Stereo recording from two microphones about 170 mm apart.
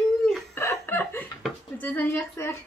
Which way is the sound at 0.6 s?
15° left (ahead or behind).